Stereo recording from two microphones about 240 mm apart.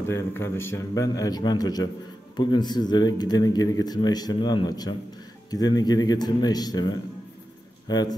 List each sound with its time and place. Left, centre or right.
0.1 s speech: centre